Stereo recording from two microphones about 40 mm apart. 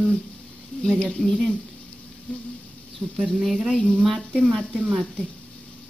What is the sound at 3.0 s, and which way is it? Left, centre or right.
Speech, right.